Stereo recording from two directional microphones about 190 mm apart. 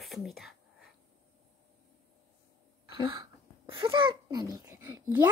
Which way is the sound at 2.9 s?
25° right (ahead or behind).